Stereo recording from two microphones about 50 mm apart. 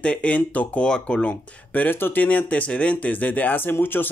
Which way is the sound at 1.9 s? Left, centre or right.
Left.